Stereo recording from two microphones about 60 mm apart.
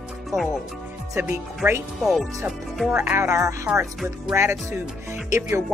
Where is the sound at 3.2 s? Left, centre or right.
Right.